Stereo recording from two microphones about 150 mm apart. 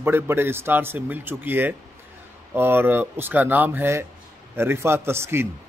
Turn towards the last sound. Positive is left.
turn(degrees=-15)  # may be behind; listen again after turning